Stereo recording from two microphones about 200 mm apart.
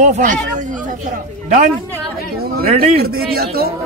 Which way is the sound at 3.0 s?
50° right (ahead or behind).